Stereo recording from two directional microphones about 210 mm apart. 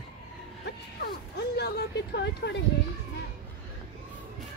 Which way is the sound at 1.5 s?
50° left (ahead or behind).